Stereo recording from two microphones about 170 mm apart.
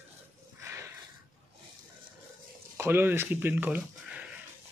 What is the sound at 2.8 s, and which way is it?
Speech, 15° right (ahead or behind).